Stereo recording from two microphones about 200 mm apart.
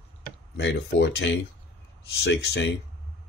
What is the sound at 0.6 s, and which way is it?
Speech, 60° left (ahead or behind).